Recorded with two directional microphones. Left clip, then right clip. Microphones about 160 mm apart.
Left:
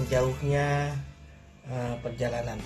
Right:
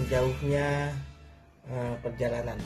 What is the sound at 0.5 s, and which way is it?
Speech, 35° right (ahead or behind).